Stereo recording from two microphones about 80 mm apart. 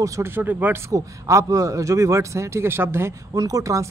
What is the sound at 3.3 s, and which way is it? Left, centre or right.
Speech, right.